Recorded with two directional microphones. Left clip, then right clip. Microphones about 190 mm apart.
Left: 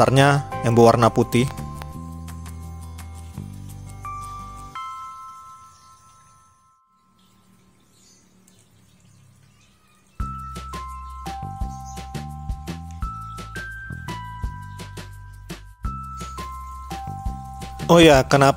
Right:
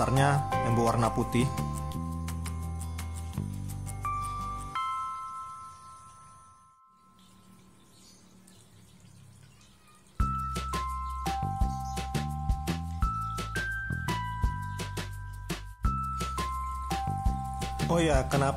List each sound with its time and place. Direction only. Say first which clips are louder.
0.0 s speech: left 10 dB; 45° left (ahead or behind)
1.5 s music: left 1 dB; centre (ahead or behind)
10.1 s music: right 1 dB; centre (ahead or behind)
17.8 s speech: left 15 dB; 45° left (ahead or behind)